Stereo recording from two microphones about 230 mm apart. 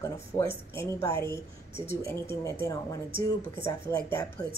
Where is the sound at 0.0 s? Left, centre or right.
Centre.